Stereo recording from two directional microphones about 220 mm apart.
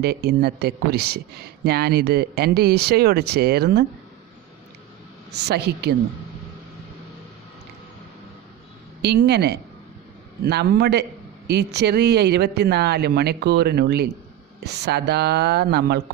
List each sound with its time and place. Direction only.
0.0 s speech: 45° right (ahead or behind)
5.3 s speech: 50° right (ahead or behind)
9.0 s speech: 50° right (ahead or behind)